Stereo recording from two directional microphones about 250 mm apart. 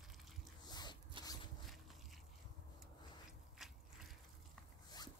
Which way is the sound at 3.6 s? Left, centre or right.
Centre.